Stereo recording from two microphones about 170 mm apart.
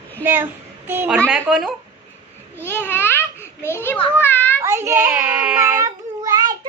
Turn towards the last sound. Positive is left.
turn(degrees=-20)  # may be behind; listen again after turning